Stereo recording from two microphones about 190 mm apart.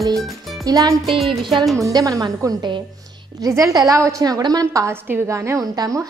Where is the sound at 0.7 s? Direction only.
20° right (ahead or behind).